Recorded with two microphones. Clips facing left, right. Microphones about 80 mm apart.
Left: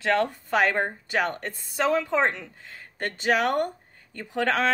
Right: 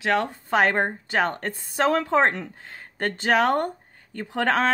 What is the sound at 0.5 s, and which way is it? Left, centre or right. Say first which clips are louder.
Speech: right 3 dB; right.